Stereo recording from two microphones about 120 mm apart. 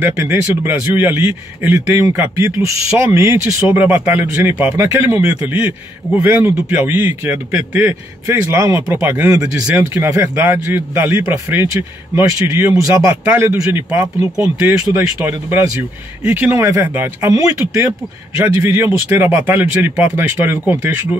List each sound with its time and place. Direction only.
0.2 s a man's voice: 20° right (ahead or behind)